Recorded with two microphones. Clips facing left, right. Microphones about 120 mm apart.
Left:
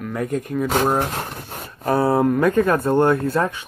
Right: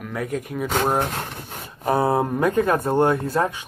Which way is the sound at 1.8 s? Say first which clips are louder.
Left 2 dB; 20° right (ahead or behind).